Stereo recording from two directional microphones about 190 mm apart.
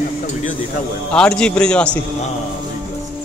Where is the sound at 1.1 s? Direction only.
5° left (ahead or behind).